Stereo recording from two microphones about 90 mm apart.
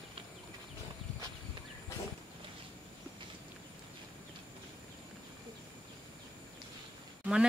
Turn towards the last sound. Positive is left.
turn(degrees=-10)  # may be behind; listen again after turning